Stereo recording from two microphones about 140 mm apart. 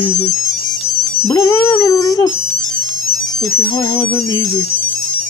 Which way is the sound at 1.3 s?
25° left (ahead or behind).